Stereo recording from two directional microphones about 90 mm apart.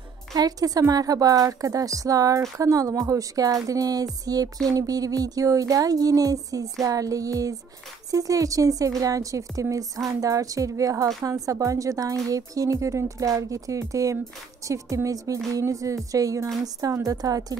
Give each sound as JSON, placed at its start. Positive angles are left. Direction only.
{"t": 0.3, "sound": "a woman's voice", "side_deg": -45}